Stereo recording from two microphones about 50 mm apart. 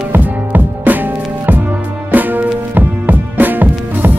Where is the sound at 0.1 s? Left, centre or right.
Right.